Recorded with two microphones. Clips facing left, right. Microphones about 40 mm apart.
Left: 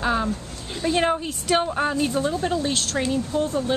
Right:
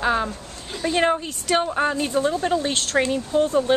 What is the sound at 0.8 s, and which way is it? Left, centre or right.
Speech, centre.